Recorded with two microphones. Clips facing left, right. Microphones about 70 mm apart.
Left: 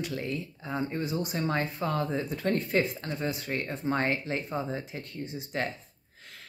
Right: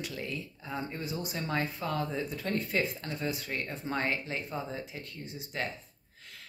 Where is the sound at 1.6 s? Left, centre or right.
Left.